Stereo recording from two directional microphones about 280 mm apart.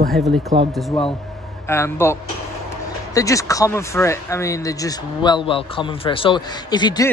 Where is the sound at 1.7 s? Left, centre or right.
Centre.